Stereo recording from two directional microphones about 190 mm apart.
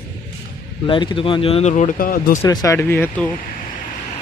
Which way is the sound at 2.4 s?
15° left (ahead or behind).